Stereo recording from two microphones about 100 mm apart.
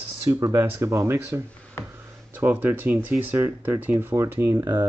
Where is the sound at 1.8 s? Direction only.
25° left (ahead or behind).